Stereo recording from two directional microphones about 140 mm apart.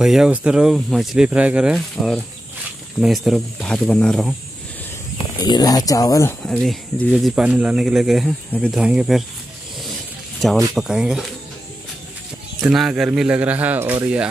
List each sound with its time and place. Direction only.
0.0 s speech: 5° right (ahead or behind)
5.1 s speech: 30° left (ahead or behind)
6.4 s speech: centre (ahead or behind)
10.7 s speech: 5° right (ahead or behind)
12.5 s speech: centre (ahead or behind)